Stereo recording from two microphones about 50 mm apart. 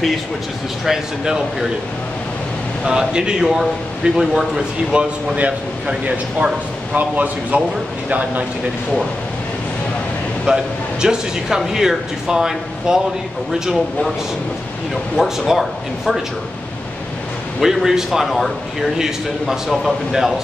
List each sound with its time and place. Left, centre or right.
0.8 s speech: centre
2.9 s speech: centre
4.9 s speech: right
10.4 s speech: centre
15.1 s a man's voice: centre
17.6 s a man's voice: centre